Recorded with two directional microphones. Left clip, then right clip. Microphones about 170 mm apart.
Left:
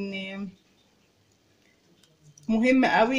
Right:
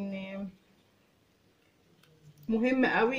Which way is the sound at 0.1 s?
55° left (ahead or behind).